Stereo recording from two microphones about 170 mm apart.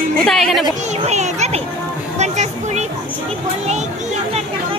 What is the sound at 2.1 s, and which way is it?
Music, 40° right (ahead or behind).